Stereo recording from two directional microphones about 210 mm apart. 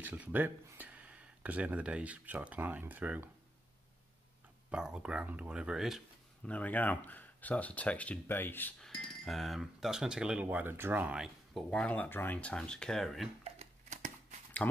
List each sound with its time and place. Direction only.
0.0 s speech: 10° right (ahead or behind)
4.6 s speech: 5° right (ahead or behind)
13.4 s shuffling cards: 30° right (ahead or behind)
14.6 s speech: 10° left (ahead or behind)